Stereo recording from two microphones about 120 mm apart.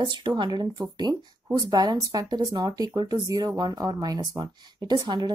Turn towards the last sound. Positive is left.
turn(degrees=-40)  # may be behind; listen again after turning